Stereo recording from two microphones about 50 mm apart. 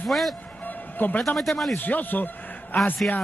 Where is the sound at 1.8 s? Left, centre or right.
Left.